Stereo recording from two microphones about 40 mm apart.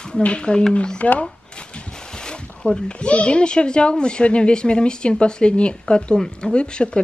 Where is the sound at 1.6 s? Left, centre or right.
Left.